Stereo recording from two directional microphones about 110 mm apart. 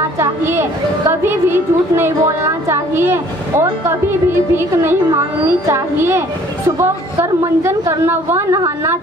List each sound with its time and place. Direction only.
0.2 s a woman's voice: 20° right (ahead or behind)